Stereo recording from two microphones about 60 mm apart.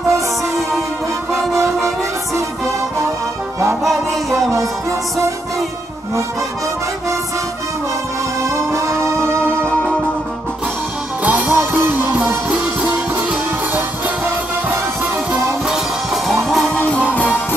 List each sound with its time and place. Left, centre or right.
4.3 s music: right
8.4 s music: right
11.2 s music: right
11.7 s music: right
12.4 s music: centre
16.4 s music: centre
16.7 s music: centre